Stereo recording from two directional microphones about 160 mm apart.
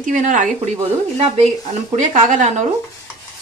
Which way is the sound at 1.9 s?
50° right (ahead or behind).